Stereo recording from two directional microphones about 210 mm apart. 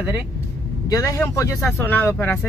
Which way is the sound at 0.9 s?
15° left (ahead or behind).